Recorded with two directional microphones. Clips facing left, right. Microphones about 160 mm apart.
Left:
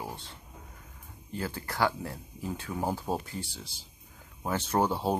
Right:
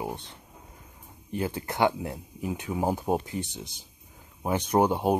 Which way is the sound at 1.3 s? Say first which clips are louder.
Right 5 dB; 20° right (ahead or behind).